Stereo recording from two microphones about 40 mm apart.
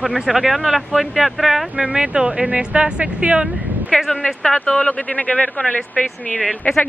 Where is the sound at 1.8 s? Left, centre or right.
Right.